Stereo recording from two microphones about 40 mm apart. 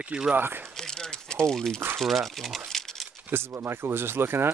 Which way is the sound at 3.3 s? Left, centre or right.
Right.